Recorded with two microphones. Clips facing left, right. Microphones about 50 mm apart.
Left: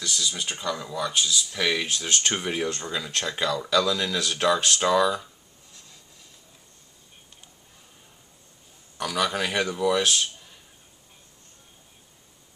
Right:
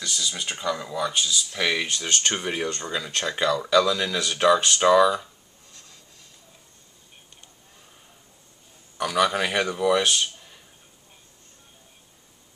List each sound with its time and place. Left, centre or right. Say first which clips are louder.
0.0 s speech: even; centre
8.9 s speech: right 4 dB; centre